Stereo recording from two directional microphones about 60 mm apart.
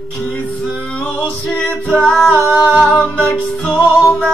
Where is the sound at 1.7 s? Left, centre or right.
Centre.